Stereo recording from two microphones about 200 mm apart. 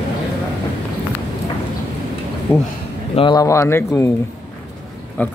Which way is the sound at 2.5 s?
15° left (ahead or behind).